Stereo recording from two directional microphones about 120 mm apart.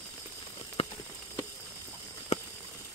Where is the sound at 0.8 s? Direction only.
60° left (ahead or behind).